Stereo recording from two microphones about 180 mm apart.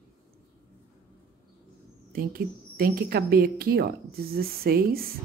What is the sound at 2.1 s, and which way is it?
Speech, 55° right (ahead or behind).